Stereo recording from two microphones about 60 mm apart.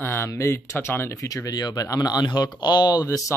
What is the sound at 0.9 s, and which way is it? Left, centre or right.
Speech, left.